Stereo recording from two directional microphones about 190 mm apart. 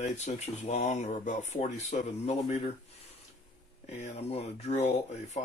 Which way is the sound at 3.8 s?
35° left (ahead or behind).